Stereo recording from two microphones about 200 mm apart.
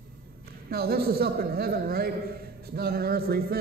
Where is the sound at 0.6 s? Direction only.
50° right (ahead or behind).